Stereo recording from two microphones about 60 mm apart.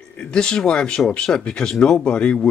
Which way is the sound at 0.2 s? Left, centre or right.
Centre.